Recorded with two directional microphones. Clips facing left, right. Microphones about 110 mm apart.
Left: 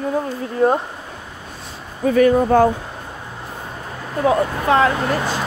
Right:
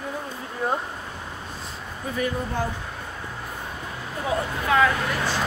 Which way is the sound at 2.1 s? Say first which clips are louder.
Left 14 dB; 65° left (ahead or behind).